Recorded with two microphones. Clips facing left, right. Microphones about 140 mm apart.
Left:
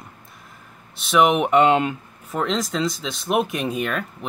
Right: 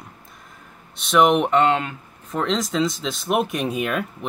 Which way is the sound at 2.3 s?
Centre (ahead or behind).